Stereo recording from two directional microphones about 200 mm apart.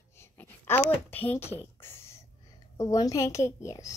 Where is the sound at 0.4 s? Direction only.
10° left (ahead or behind).